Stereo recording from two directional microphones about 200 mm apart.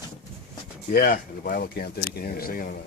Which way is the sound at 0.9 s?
45° left (ahead or behind).